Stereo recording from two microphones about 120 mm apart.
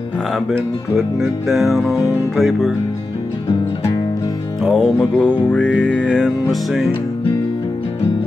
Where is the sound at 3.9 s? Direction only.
30° left (ahead or behind).